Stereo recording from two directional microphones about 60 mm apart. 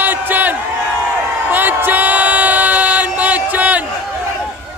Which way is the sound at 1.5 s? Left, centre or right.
Right.